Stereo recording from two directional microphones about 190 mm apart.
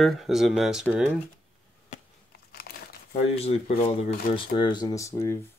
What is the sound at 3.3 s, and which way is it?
Speech, 35° left (ahead or behind).